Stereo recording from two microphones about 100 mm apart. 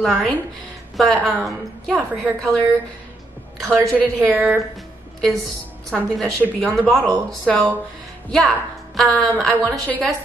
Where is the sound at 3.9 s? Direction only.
15° left (ahead or behind).